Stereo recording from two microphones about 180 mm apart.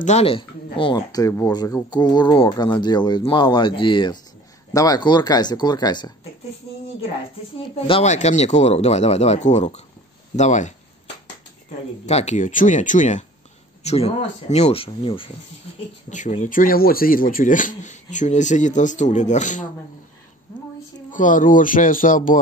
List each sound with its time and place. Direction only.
0.0 s speech: 35° left (ahead or behind)
7.7 s speech: 30° left (ahead or behind)
12.1 s speech: 40° left (ahead or behind)
16.1 s speech: 40° left (ahead or behind)
21.1 s speech: 45° left (ahead or behind)